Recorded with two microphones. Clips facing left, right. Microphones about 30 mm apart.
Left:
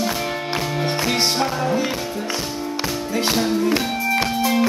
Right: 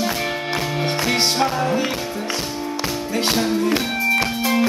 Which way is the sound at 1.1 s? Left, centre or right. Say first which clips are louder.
Right 2 dB; centre.